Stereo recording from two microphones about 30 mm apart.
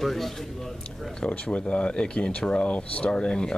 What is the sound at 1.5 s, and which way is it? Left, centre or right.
Speech, left.